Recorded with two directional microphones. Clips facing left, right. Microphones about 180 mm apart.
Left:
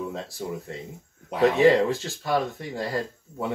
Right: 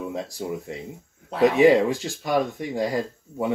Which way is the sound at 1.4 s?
15° right (ahead or behind).